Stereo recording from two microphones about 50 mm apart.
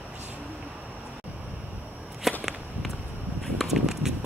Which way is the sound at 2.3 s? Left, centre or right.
Centre.